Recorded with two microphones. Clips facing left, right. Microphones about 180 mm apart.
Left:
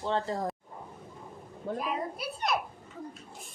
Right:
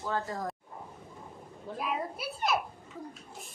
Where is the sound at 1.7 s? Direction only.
Centre (ahead or behind).